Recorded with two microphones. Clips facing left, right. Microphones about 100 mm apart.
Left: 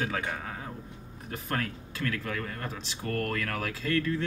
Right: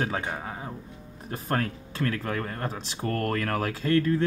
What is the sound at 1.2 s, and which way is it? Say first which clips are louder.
Speech: right 4 dB; 35° right (ahead or behind).